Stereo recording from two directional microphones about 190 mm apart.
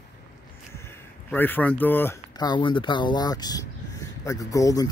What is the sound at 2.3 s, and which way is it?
Speech, 25° left (ahead or behind).